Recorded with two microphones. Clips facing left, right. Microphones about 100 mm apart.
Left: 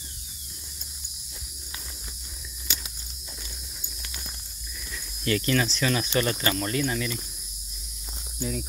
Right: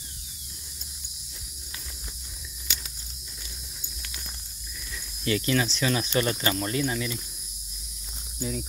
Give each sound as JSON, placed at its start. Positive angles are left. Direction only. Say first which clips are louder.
{"t": 5.2, "sound": "speech", "louder": "left 1 dB", "side_deg": -20}
{"t": 8.4, "sound": "speech", "louder": "left 1 dB", "side_deg": -15}